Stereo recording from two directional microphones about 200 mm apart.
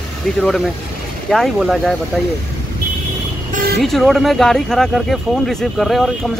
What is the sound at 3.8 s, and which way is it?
Speech, centre (ahead or behind).